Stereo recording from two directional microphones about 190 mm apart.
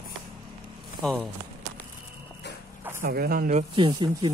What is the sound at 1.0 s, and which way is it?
Speech, centre (ahead or behind).